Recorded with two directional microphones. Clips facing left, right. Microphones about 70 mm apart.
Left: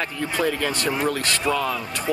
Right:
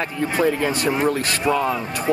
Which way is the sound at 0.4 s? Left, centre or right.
Centre.